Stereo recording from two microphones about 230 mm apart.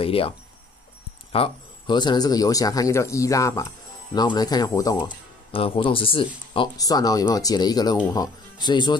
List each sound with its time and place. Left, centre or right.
0.0 s speech: left
1.3 s speech: left